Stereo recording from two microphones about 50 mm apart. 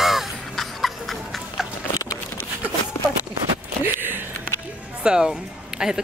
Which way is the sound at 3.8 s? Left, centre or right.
Right.